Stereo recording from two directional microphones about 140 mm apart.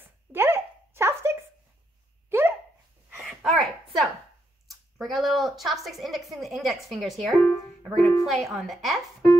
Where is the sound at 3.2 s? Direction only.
Centre (ahead or behind).